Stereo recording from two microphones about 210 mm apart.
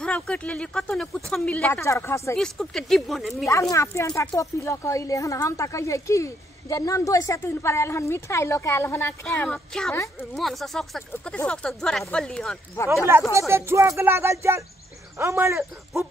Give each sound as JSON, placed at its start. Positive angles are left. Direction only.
{"t": 0.0, "sound": "speech", "side_deg": 5}
{"t": 2.3, "sound": "speech", "side_deg": 0}
{"t": 3.7, "sound": "speech", "side_deg": 15}
{"t": 13.3, "sound": "speech", "side_deg": -15}